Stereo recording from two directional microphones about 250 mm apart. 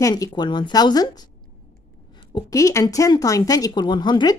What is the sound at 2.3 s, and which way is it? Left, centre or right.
A woman's voice, centre.